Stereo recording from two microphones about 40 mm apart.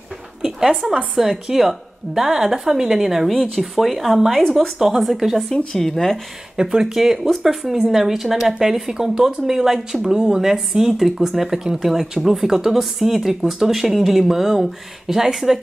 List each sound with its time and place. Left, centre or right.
0.4 s a woman's voice: centre
5.7 s speech: centre
6.5 s speech: centre
6.8 s a woman's voice: centre